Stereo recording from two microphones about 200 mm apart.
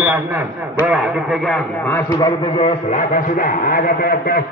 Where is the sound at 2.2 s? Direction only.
25° left (ahead or behind).